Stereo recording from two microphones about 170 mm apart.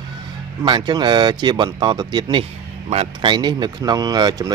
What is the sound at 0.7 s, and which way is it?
Speech, 25° right (ahead or behind).